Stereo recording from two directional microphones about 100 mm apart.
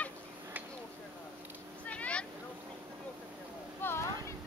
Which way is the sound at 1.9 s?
15° left (ahead or behind).